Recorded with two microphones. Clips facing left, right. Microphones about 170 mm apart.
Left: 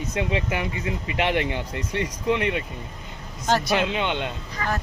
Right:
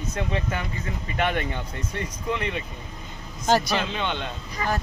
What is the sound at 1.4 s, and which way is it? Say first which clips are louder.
Speech: left 3 dB; 80° left.